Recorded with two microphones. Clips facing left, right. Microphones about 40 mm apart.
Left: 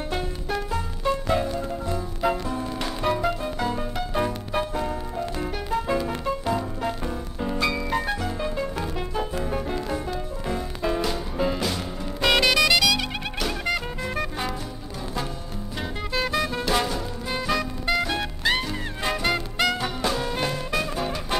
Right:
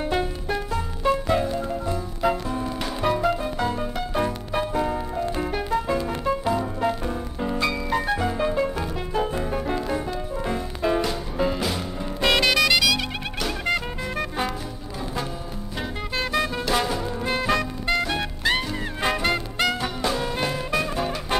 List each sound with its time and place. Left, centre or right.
0.1 s music: centre
1.3 s music: centre
5.7 s music: centre
8.2 s music: centre
16.3 s music: centre
17.4 s music: centre
17.8 s music: centre